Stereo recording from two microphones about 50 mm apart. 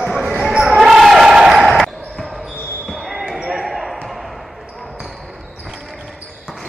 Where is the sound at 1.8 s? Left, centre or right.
Centre.